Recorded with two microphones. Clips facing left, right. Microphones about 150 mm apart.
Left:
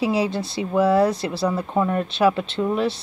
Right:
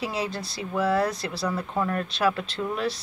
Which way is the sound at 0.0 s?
30° left (ahead or behind).